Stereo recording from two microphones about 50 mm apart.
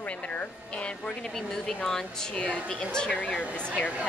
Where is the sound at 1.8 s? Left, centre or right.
Centre.